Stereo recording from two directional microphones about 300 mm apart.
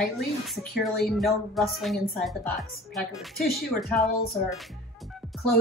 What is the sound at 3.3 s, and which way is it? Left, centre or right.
Speech, left.